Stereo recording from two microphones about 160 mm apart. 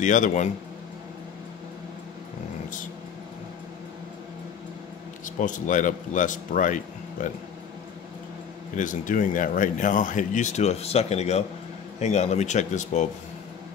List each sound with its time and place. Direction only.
0.0 s speech: 50° left (ahead or behind)
5.2 s speech: 55° left (ahead or behind)
8.7 s speech: 55° left (ahead or behind)